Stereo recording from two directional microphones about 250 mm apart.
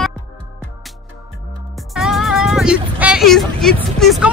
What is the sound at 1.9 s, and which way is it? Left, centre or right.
Speech, centre.